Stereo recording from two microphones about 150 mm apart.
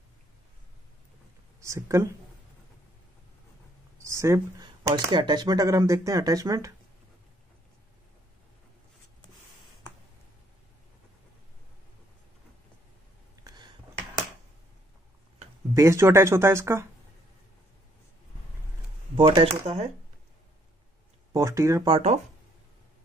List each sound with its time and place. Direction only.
1.6 s speech: 20° right (ahead or behind)
4.0 s a sound: 20° right (ahead or behind)
4.6 s speech: 30° right (ahead or behind)
13.4 s a sound: 30° right (ahead or behind)
15.7 s speech: 20° right (ahead or behind)
19.1 s speech: 35° right (ahead or behind)
21.3 s speech: 20° right (ahead or behind)
21.9 s speech: 50° right (ahead or behind)